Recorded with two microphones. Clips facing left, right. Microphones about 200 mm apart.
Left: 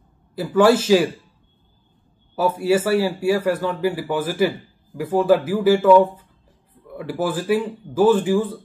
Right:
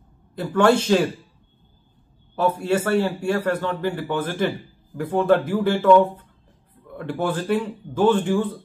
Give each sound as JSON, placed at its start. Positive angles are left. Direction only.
{"t": 0.4, "sound": "speech", "side_deg": 5}
{"t": 2.3, "sound": "speech", "side_deg": 5}